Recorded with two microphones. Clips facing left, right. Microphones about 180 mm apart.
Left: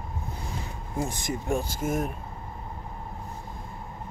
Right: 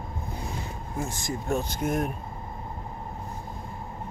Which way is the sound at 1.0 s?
15° left (ahead or behind).